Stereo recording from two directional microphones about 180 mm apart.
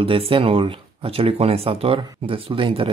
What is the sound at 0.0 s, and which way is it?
Speech, 30° right (ahead or behind).